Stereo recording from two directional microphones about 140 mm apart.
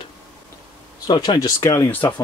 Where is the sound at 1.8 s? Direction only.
15° left (ahead or behind).